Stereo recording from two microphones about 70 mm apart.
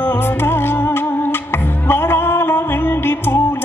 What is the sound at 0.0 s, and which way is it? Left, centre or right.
Music, left.